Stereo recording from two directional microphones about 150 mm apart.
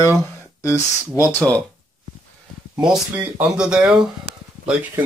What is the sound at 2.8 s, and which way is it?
Speech, 5° right (ahead or behind).